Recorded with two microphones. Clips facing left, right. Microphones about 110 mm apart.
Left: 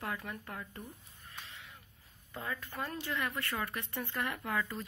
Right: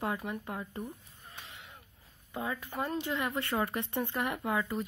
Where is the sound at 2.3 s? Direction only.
15° right (ahead or behind).